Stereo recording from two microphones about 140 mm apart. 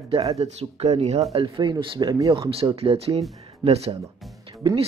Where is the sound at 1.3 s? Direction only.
35° right (ahead or behind).